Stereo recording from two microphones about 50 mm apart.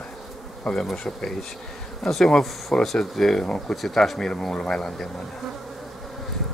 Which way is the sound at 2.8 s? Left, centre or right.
Centre.